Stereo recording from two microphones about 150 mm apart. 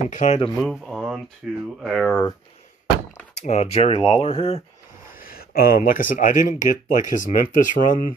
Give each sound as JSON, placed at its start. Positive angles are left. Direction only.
{"t": 0.1, "sound": "speech", "side_deg": 55}
{"t": 0.6, "sound": "a sound", "side_deg": 0}
{"t": 1.4, "sound": "speech", "side_deg": -5}
{"t": 3.3, "sound": "speech", "side_deg": 45}
{"t": 5.1, "sound": "speech", "side_deg": 80}